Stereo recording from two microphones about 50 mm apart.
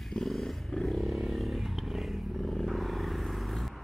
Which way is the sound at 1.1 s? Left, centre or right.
Centre.